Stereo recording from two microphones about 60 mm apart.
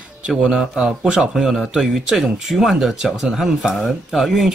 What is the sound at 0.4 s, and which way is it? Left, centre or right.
Speech, centre.